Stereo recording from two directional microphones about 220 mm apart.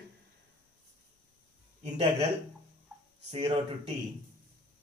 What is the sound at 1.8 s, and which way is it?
Speech, 25° right (ahead or behind).